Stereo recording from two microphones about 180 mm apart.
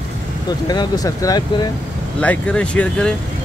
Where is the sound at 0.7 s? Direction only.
20° left (ahead or behind).